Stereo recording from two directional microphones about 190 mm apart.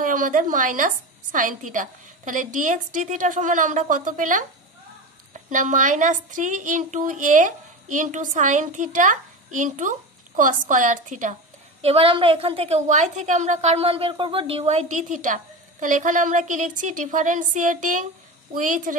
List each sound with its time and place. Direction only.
0.0 s a woman's voice: 45° right (ahead or behind)
11.8 s a woman's voice: 30° right (ahead or behind)